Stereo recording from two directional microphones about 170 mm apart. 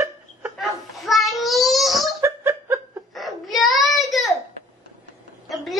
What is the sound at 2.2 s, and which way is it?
Giggle, 15° right (ahead or behind).